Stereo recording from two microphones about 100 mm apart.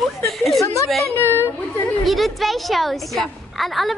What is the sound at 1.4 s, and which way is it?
Speech, 25° left (ahead or behind).